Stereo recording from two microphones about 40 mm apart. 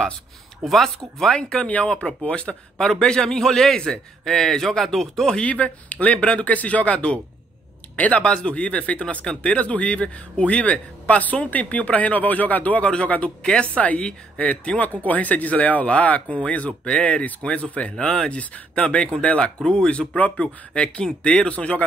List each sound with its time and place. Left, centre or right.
0.7 s speech: centre
1.3 s speech: centre
2.8 s speech: centre
4.2 s speech: centre
5.2 s speech: centre
5.5 s a man's voice: left
6.1 s speech: left
6.4 s a man's voice: left
8.2 s speech: left
9.2 s speech: centre
9.5 s a man's voice: left
12.8 s a man's voice: left
17.9 s speech: centre
18.4 s a man's voice: left